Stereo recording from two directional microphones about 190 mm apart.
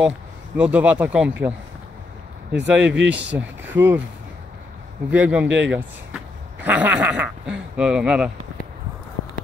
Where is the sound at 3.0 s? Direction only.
10° right (ahead or behind).